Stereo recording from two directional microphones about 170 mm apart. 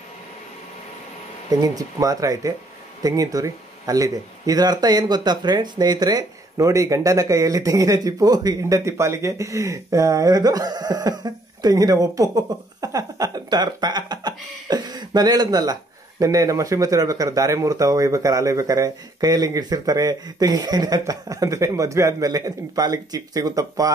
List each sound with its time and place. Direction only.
1.5 s speech: 20° right (ahead or behind)